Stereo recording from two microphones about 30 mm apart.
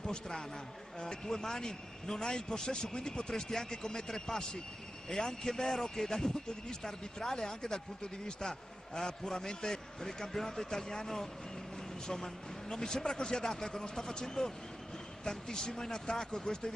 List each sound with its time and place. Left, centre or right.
0.9 s a man's voice: left